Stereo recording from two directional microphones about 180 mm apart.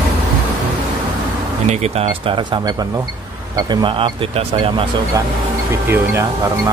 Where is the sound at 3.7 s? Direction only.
30° right (ahead or behind).